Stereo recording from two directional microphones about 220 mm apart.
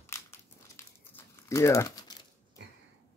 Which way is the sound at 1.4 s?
15° left (ahead or behind).